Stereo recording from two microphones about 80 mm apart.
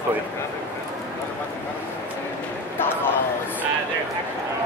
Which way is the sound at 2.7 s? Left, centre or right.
Left.